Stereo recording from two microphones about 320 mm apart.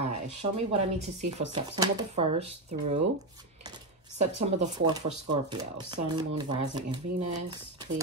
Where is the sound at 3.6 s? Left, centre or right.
Centre.